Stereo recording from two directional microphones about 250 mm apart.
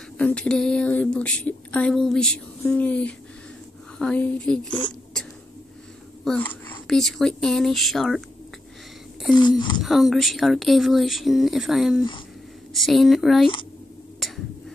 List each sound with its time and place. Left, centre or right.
0.2 s speech: centre
4.6 s speech: centre
6.2 s speech: centre
9.8 s speech: centre